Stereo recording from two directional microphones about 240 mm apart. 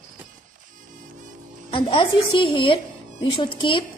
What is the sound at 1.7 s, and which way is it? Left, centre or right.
A woman's voice, left.